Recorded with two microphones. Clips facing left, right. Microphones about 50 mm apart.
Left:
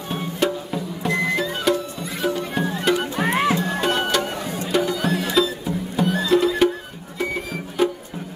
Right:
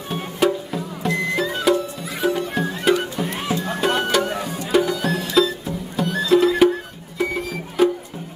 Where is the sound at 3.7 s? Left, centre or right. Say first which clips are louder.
Right 1 dB; centre.